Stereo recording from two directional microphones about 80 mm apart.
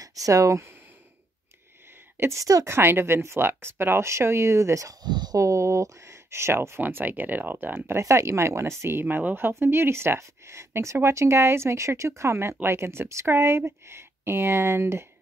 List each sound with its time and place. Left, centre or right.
0.0 s speech: right
2.1 s a woman's voice: right
2.4 s speech: right
2.7 s speech: right
5.0 s speech: right
5.4 s speech: right
8.0 s speech: right
9.0 s speech: right